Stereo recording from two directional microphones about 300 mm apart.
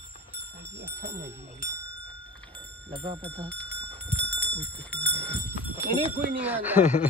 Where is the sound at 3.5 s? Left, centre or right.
Centre.